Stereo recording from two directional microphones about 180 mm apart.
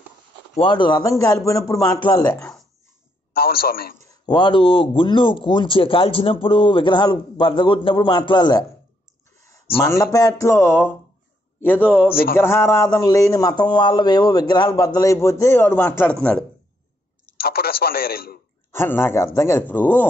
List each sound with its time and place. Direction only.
0.6 s speech: 25° left (ahead or behind)
2.2 s speech: 5° left (ahead or behind)
3.3 s a man's voice: 55° left (ahead or behind)
4.1 s speech: 25° left (ahead or behind)
10.1 s speech: 20° left (ahead or behind)
12.4 s speech: 15° left (ahead or behind)
17.4 s a man's voice: 55° left (ahead or behind)
18.7 s speech: 15° left (ahead or behind)